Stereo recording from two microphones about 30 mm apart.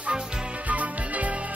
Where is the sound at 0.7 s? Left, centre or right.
Right.